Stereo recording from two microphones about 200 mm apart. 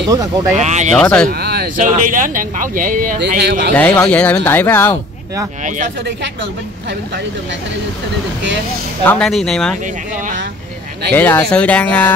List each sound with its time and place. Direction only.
0.1 s speech: 20° right (ahead or behind)
0.6 s speech: 35° right (ahead or behind)
0.9 s speech: 5° left (ahead or behind)
1.3 s speech: 50° right (ahead or behind)
3.2 s a man's voice: 55° right (ahead or behind)
3.7 s speech: 10° left (ahead or behind)
9.0 s speech: 5° left (ahead or behind)
11.1 s speech: 10° left (ahead or behind)